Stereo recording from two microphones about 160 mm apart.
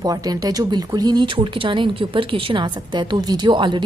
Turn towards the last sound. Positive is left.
turn(degrees=-30)  # may be behind; listen again after turning